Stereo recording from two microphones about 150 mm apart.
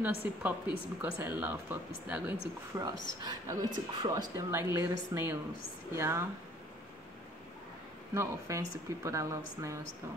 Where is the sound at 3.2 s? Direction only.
25° right (ahead or behind).